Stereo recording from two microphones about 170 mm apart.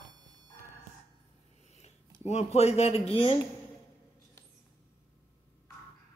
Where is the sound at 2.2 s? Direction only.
40° left (ahead or behind).